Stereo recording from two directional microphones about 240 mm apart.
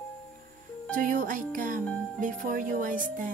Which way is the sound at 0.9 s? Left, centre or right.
Right.